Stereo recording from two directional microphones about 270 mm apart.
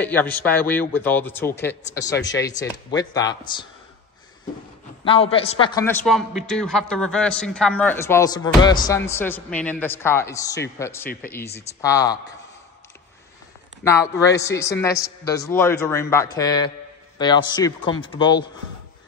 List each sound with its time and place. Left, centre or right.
0.0 s a man's voice: centre
5.0 s a man's voice: left
6.0 s a man's voice: centre
13.8 s a man's voice: centre